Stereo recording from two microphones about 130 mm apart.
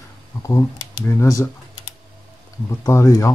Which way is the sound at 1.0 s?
20° left (ahead or behind).